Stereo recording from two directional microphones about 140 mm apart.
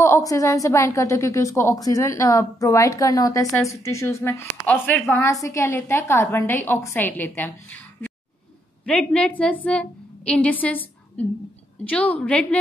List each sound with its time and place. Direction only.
0.0 s a woman's voice: 20° left (ahead or behind)
8.8 s a woman's voice: 5° left (ahead or behind)